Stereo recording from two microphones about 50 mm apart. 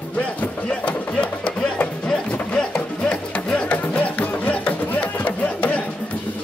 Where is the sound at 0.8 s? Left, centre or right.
Left.